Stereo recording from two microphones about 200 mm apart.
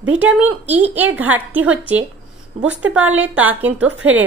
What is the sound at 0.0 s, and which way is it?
A woman's voice, 5° right (ahead or behind).